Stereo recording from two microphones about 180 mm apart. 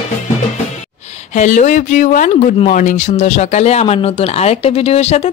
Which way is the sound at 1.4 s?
40° left (ahead or behind).